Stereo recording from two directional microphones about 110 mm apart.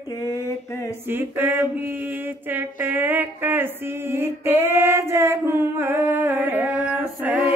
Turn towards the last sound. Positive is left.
turn(degrees=-10)  # may be behind; listen again after turning